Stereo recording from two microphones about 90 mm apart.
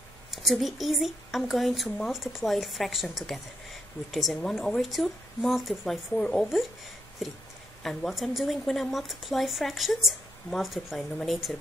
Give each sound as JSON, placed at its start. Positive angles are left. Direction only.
{"t": 0.3, "sound": "speech", "side_deg": 0}